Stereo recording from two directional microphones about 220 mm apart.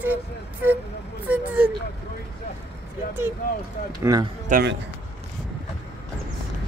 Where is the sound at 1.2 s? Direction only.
5° right (ahead or behind).